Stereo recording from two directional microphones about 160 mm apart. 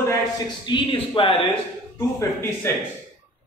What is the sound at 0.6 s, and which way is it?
Speech, 30° left (ahead or behind).